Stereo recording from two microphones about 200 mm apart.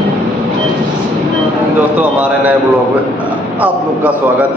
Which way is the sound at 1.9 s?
5° right (ahead or behind).